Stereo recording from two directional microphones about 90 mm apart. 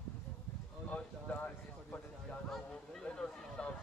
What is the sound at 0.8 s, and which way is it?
Clip-clop, 15° left (ahead or behind).